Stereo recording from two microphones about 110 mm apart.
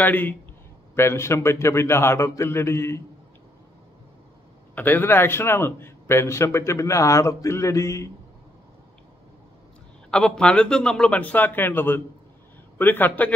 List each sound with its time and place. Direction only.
0.0 s a man's voice: 15° left (ahead or behind)
4.7 s a man's voice: 20° left (ahead or behind)
10.1 s a man's voice: 5° left (ahead or behind)